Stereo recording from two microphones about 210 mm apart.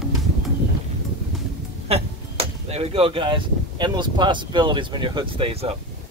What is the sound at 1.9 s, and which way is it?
Speech, 30° right (ahead or behind).